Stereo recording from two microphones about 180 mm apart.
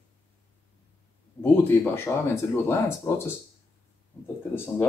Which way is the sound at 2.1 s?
15° left (ahead or behind).